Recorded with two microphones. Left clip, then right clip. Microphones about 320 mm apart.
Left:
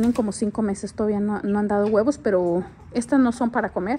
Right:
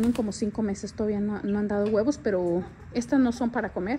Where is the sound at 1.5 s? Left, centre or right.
Left.